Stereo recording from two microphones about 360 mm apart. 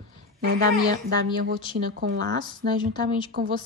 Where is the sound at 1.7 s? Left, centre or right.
Centre.